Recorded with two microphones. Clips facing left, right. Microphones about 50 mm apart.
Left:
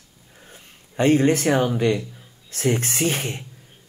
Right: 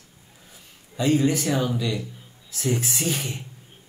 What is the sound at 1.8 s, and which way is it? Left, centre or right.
A woman's voice, left.